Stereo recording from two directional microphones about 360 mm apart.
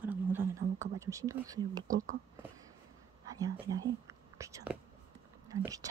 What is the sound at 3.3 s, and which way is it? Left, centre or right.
Speech, centre.